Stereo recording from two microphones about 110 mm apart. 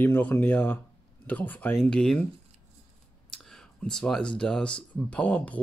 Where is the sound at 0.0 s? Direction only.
15° left (ahead or behind).